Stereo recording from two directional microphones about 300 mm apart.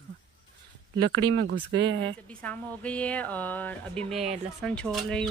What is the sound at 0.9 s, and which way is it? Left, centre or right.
Speech, right.